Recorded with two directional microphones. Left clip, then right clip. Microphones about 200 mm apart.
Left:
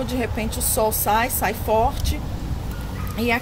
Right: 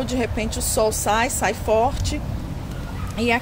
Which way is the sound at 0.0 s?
40° right (ahead or behind).